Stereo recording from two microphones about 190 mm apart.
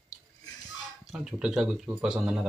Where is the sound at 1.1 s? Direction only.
5° right (ahead or behind).